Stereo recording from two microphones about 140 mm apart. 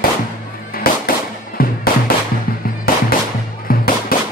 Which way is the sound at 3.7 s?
90° left.